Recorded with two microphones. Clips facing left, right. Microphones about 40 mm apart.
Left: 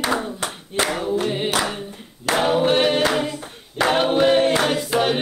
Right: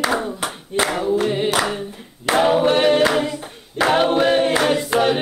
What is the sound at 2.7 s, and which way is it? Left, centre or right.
Music, centre.